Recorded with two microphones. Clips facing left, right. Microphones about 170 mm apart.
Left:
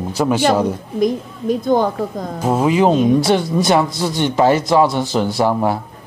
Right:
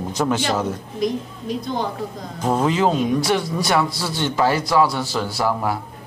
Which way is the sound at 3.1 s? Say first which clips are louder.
Left 5 dB; 25° left (ahead or behind).